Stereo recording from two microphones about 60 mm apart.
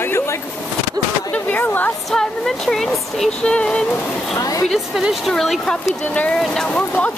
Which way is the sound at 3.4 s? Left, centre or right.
Centre.